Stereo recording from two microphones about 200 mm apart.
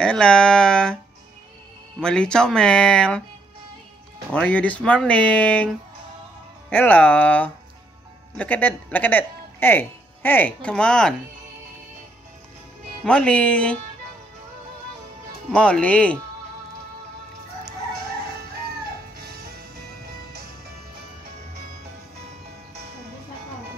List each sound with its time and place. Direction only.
0.0 s speech: 5° left (ahead or behind)
2.0 s speech: 5° left (ahead or behind)
4.3 s speech: 5° left (ahead or behind)
6.7 s speech: 10° left (ahead or behind)
13.0 s speech: 5° left (ahead or behind)
15.5 s speech: 5° left (ahead or behind)
19.1 s music: 50° right (ahead or behind)